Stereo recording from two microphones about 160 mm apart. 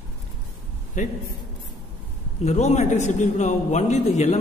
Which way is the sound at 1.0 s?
55° left (ahead or behind).